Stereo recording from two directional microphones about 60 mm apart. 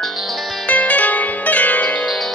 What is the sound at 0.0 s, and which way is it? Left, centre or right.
Music, centre.